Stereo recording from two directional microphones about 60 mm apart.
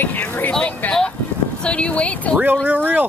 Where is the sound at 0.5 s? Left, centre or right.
Centre.